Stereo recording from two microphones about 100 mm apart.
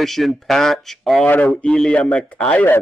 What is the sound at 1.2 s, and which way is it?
Speech, 15° left (ahead or behind).